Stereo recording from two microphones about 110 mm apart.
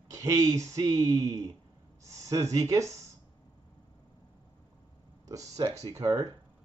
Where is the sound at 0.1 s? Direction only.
30° right (ahead or behind).